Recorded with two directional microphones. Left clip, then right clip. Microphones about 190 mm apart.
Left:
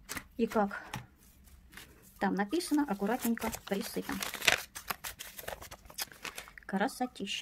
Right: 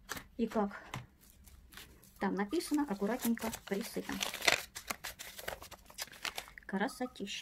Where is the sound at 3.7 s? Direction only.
25° left (ahead or behind).